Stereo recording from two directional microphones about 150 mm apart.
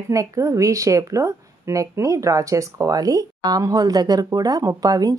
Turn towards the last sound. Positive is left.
turn(degrees=-25)  # may be behind; listen again after turning